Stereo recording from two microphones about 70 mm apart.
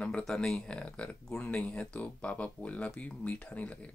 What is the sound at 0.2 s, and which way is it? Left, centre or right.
Speech, centre.